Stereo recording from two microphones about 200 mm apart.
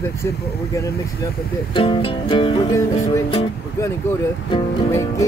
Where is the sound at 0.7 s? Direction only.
15° left (ahead or behind).